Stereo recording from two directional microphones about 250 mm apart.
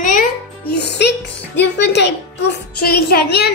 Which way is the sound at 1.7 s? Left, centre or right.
Left.